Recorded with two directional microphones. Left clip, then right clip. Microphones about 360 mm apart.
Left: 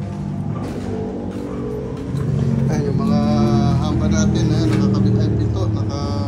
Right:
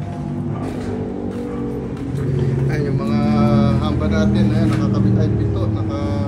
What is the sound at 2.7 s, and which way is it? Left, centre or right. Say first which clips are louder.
Vehicle: left 2 dB; centre.